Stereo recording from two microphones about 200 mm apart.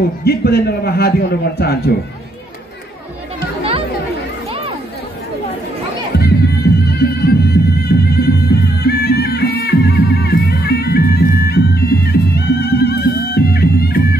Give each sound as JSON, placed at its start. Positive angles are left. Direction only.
{"t": 0.2, "sound": "a man's voice", "side_deg": 50}
{"t": 6.1, "sound": "music", "side_deg": 50}